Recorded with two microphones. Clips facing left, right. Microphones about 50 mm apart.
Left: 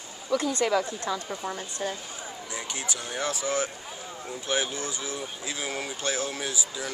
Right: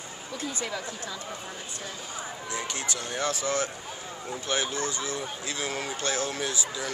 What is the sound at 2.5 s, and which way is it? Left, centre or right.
Speech, centre.